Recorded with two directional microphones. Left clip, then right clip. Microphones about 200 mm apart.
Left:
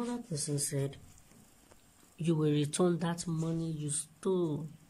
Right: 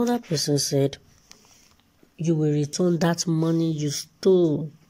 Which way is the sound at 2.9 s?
30° right (ahead or behind).